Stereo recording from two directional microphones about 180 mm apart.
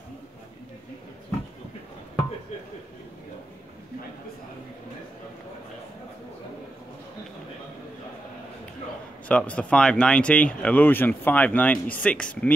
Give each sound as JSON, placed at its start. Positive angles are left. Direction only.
{"t": 9.3, "sound": "speech", "side_deg": 5}